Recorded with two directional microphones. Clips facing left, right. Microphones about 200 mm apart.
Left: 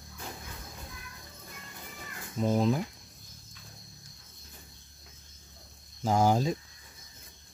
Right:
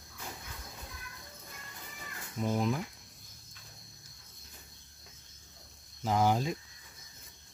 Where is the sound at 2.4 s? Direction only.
30° left (ahead or behind).